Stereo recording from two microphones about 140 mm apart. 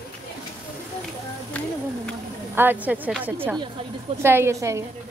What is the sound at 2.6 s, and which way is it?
Speech, 10° right (ahead or behind).